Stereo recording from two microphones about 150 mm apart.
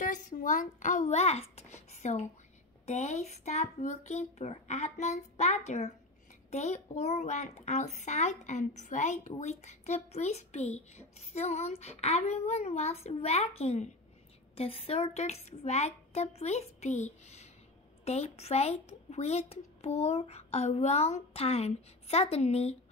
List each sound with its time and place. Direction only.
0.0 s a child's voice: 60° left (ahead or behind); by 22.8 s 45° left (ahead or behind)